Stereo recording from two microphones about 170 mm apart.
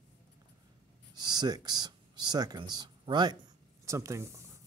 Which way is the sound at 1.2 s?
25° right (ahead or behind).